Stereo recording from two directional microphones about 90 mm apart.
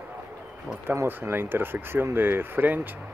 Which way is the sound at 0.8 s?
30° right (ahead or behind).